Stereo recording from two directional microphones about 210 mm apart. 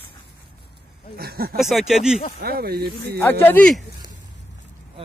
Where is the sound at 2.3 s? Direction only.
45° right (ahead or behind).